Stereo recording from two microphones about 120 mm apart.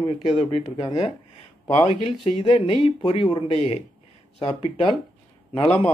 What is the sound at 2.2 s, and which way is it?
Speech, 50° left (ahead or behind).